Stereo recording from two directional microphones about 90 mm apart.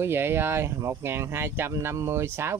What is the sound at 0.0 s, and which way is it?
Speech, 25° right (ahead or behind).